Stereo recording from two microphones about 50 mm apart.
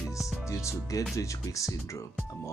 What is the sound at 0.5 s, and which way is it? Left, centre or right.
Speech, left.